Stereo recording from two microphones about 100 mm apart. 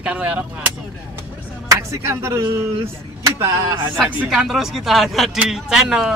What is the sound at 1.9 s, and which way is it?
Speech, 25° right (ahead or behind).